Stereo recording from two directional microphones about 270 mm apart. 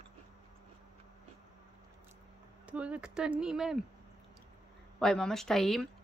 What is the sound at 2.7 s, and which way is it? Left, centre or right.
Speech, centre.